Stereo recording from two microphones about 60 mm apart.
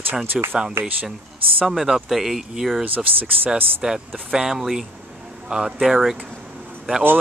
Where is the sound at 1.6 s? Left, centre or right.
Centre.